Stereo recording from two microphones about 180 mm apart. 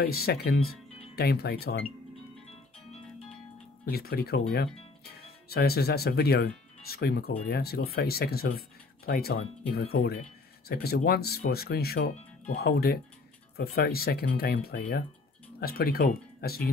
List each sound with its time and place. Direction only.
0.0 s speech: 60° left (ahead or behind)
3.8 s speech: 60° left (ahead or behind)